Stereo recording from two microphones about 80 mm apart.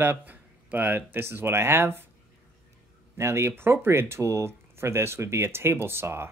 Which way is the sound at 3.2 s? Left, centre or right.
Right.